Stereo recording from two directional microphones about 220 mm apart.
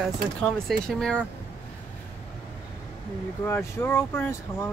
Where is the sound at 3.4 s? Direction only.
10° left (ahead or behind).